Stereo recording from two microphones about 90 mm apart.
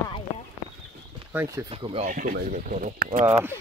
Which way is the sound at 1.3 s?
35° right (ahead or behind).